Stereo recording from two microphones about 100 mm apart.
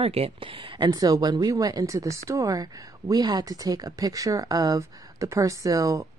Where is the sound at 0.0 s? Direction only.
75° right (ahead or behind).